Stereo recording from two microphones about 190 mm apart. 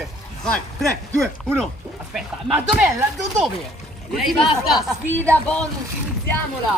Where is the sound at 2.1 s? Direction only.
5° right (ahead or behind).